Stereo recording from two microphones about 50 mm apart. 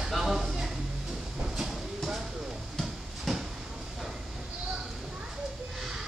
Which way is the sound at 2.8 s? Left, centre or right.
Centre.